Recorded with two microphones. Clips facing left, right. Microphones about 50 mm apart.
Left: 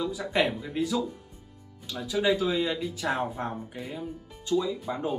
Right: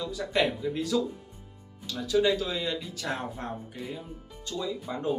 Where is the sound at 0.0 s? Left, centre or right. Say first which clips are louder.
Left 1 dB; centre.